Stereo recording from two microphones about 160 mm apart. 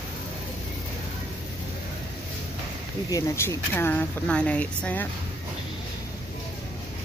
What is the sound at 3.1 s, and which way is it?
Speech, 20° left (ahead or behind).